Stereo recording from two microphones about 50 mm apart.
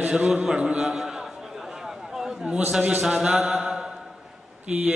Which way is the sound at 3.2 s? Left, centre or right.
Centre.